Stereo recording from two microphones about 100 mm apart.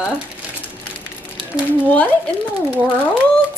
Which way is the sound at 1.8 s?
15° left (ahead or behind).